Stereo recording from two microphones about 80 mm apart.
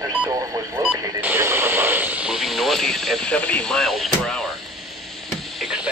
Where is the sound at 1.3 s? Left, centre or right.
Right.